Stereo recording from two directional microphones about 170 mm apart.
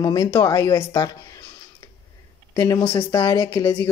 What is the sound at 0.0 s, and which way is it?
Speech, 20° left (ahead or behind).